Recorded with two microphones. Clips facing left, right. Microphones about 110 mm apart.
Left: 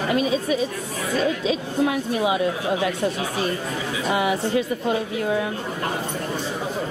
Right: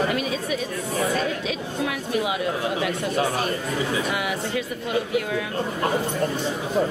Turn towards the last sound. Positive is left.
turn(degrees=30)  # may be behind; listen again after turning